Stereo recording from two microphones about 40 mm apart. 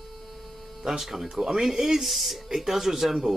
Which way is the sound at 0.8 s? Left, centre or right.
Centre.